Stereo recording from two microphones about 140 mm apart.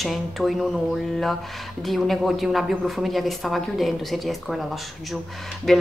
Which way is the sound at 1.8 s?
Centre (ahead or behind).